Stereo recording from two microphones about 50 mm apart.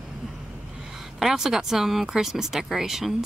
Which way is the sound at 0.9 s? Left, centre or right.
Centre.